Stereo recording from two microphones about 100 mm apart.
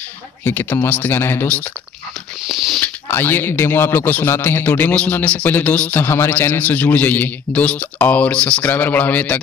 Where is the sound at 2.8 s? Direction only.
20° left (ahead or behind).